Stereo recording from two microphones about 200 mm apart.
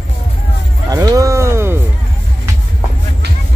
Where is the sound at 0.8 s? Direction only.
20° right (ahead or behind).